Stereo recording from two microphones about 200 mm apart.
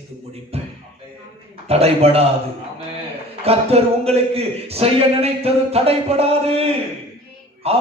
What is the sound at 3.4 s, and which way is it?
A man's voice, 30° right (ahead or behind).